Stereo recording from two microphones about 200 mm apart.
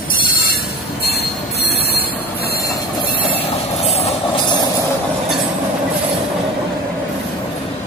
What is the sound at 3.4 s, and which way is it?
Vehicle, 30° left (ahead or behind).